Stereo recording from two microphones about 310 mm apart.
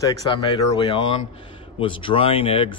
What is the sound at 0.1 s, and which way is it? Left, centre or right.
Speech, centre.